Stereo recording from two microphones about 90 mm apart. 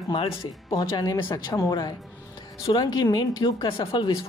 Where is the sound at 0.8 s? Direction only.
50° left (ahead or behind).